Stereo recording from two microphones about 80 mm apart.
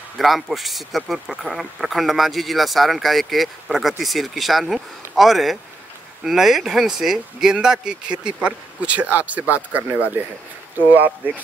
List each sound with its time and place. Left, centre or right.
0.2 s speech: centre; by 10.0 s right
11.2 s speech: right